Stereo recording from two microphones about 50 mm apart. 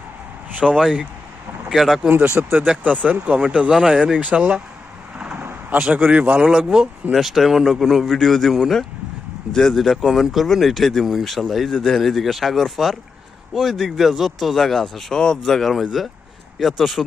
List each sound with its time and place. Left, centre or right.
0.6 s speech: centre
2.0 s speech: right
2.6 s speech: right
3.7 s speech: centre
4.0 s speech: right
6.5 s speech: centre
12.0 s speech: centre